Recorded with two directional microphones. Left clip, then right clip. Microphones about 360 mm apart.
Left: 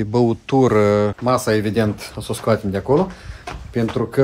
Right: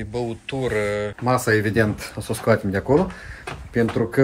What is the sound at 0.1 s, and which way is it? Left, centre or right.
Mantra, left.